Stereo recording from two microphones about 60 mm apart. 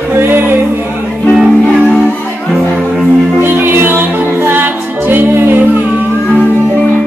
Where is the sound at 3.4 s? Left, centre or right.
Right.